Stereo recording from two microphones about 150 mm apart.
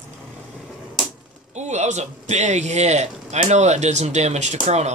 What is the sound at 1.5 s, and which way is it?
A man's voice, 50° right (ahead or behind).